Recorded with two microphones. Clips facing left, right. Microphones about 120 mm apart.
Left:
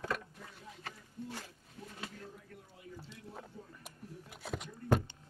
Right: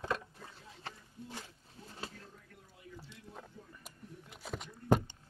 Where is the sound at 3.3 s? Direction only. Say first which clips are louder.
Left 2 dB; 5° left (ahead or behind).